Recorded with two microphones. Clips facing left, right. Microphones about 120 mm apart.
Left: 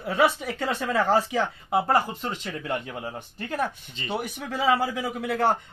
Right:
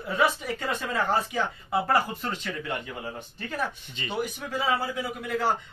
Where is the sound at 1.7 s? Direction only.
20° left (ahead or behind).